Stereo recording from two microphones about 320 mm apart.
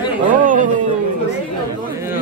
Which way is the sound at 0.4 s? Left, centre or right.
Right.